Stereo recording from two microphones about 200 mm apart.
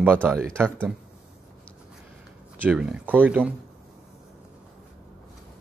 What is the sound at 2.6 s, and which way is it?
Speech, 5° right (ahead or behind).